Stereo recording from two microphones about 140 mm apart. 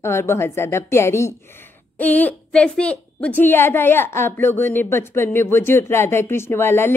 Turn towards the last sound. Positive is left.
turn(degrees=15)  # may be behind; listen again after turning